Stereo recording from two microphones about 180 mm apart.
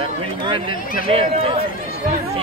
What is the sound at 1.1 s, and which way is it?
Speech, 30° right (ahead or behind).